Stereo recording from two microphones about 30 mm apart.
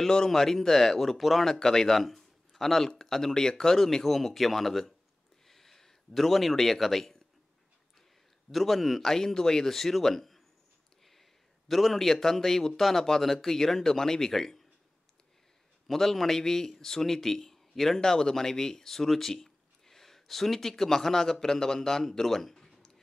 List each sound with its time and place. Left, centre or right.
0.3 s speech: centre
2.0 s a sound: centre
2.9 s a man's voice: centre
8.5 s a man's voice: centre
9.0 s a man's voice: centre
15.9 s speech: centre